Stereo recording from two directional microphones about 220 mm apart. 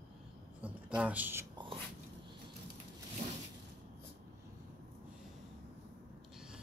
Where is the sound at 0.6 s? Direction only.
5° right (ahead or behind).